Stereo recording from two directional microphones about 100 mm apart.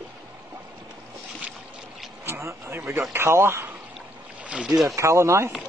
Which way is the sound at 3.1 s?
25° right (ahead or behind).